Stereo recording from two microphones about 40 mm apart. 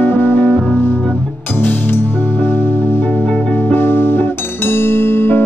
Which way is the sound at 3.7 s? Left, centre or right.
Left.